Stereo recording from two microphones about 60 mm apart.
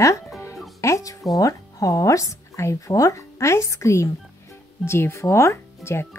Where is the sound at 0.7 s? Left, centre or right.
Left.